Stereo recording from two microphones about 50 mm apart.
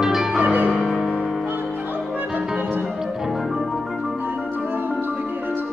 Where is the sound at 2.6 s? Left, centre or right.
Right.